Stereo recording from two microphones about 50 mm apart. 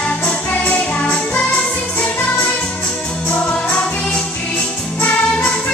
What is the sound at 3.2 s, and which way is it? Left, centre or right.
Music, left.